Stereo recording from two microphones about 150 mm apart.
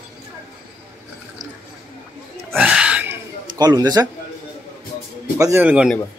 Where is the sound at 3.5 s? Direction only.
25° right (ahead or behind).